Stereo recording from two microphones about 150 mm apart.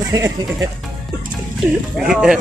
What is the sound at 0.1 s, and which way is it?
Speech, 25° right (ahead or behind).